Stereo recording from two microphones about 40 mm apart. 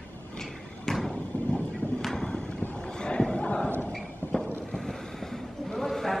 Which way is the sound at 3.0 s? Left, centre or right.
Centre.